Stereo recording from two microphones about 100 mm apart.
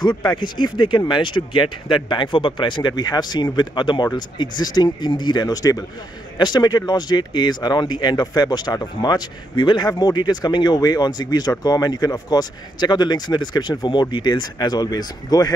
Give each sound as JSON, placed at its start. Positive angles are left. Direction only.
{"t": 0.2, "sound": "speech", "side_deg": 50}